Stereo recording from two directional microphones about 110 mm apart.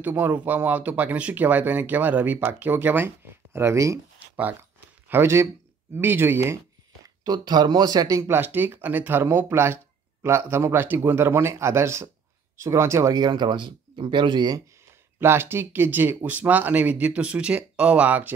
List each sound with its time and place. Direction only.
0.1 s speech: 15° right (ahead or behind)
4.4 s a sound: 15° right (ahead or behind)
5.9 s speech: 20° right (ahead or behind)
7.2 s speech: 40° right (ahead or behind)
15.1 s speech: 20° right (ahead or behind)